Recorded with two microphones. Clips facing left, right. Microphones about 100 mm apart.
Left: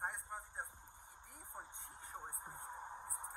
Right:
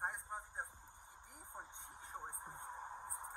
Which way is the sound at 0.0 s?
15° right (ahead or behind).